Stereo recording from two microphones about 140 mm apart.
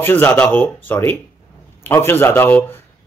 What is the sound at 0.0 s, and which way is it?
Speech, 10° left (ahead or behind).